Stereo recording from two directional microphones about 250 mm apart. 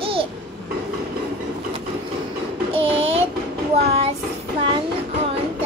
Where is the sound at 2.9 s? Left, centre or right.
Right.